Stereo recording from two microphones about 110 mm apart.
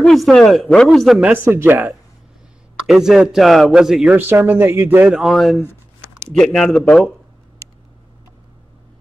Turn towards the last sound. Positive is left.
turn(degrees=5)  # may be behind; listen again after turning